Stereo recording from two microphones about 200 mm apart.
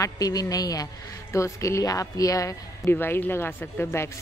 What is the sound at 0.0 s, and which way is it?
A woman's voice, 20° left (ahead or behind).